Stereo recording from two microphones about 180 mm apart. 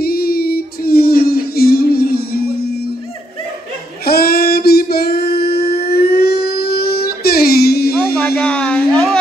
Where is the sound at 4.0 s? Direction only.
60° left (ahead or behind).